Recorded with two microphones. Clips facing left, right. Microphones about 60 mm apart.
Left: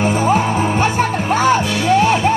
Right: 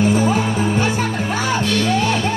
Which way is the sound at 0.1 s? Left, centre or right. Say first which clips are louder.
Left 2 dB; left.